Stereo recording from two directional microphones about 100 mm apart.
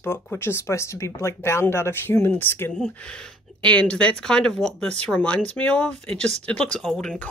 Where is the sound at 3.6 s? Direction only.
10° left (ahead or behind).